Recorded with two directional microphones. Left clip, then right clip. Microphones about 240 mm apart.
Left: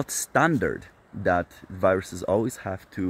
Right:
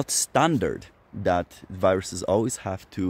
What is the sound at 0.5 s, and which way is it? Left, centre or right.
Speech, centre.